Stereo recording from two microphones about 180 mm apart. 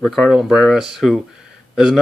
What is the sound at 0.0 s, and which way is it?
Speech, centre (ahead or behind).